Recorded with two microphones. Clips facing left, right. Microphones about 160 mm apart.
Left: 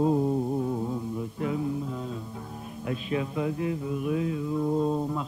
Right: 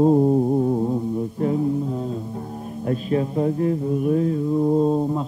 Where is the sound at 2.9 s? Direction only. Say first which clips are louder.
Right 7 dB; 40° right (ahead or behind).